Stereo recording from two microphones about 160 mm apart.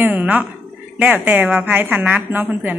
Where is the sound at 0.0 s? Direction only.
10° right (ahead or behind).